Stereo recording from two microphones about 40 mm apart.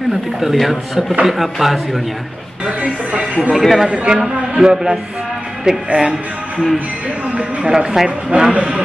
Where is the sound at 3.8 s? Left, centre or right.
Right.